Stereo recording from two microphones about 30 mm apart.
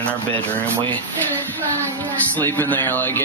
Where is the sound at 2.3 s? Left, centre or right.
Left.